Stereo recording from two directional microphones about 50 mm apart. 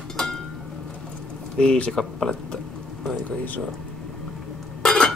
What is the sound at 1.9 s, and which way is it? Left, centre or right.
Speech, centre.